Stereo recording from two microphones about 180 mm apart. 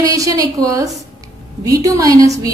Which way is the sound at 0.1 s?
20° right (ahead or behind).